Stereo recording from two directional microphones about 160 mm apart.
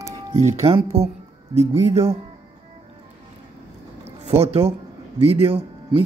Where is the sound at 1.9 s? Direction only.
40° right (ahead or behind).